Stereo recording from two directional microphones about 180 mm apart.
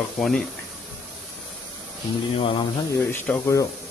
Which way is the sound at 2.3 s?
30° left (ahead or behind).